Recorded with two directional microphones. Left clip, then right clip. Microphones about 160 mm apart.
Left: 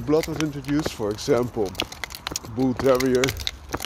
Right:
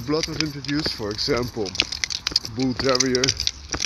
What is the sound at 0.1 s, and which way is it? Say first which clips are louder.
Speech: left 2 dB; 40° left (ahead or behind).